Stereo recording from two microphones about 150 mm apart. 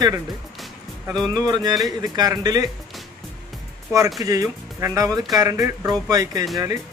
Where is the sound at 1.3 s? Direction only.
25° right (ahead or behind).